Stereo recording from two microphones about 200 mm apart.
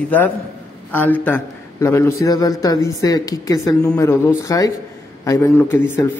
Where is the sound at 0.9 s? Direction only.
10° left (ahead or behind).